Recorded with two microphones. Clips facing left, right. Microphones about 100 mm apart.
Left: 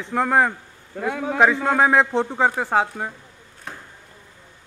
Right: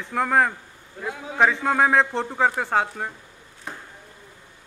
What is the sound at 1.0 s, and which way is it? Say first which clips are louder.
Speech: left 7 dB; 70° left (ahead or behind).